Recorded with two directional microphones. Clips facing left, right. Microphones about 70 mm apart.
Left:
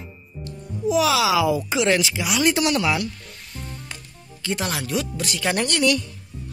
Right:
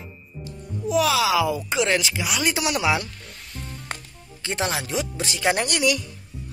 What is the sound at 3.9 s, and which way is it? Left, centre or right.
Music, right.